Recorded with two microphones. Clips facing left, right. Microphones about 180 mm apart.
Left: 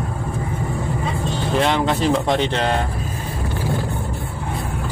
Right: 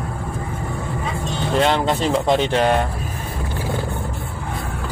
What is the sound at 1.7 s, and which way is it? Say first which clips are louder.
Speech: even; centre (ahead or behind).